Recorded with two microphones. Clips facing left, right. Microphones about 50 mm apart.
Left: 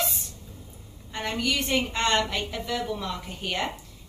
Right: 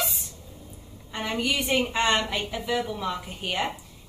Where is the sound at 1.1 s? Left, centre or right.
Centre.